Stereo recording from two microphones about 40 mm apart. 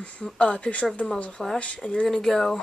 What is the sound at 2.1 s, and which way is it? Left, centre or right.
Speech, centre.